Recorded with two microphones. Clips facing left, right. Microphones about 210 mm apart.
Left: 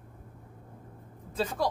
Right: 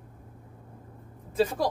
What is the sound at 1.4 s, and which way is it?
Mechanisms, 10° right (ahead or behind).